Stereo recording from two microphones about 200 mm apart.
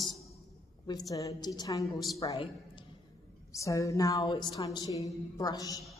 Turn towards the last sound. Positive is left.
turn(degrees=20)  # may be behind; listen again after turning